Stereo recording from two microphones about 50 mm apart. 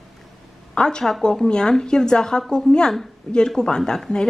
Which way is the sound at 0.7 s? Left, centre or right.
Centre.